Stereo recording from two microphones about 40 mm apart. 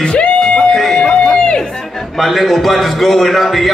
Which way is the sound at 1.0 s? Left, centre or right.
Left.